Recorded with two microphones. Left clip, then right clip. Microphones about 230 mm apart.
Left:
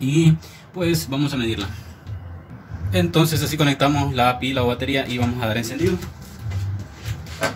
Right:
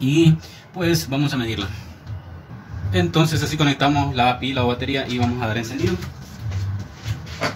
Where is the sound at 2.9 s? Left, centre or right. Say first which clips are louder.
Even; left.